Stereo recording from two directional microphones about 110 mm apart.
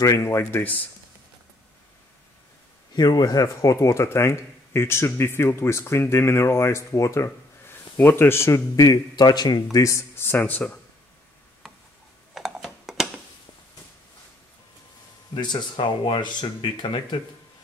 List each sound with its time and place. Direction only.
0.0 s speech: 25° left (ahead or behind)
2.9 s speech: 35° left (ahead or behind); by 10.6 s 20° left (ahead or behind)
12.4 s typing: 5° right (ahead or behind)
15.3 s speech: 45° left (ahead or behind)